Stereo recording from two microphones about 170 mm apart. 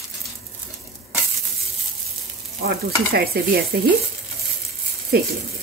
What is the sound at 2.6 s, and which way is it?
Speech, 65° right (ahead or behind).